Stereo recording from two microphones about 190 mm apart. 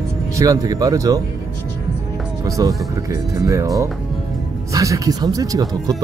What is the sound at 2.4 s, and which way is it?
Speech, 20° right (ahead or behind).